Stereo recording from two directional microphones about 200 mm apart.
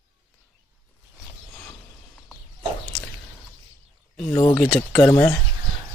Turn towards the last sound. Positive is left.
turn(degrees=10)  # may be behind; listen again after turning